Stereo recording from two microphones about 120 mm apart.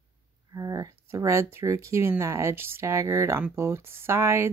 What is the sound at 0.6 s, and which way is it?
Speech, 30° right (ahead or behind).